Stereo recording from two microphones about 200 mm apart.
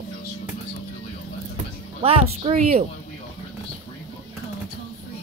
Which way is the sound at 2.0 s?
30° right (ahead or behind).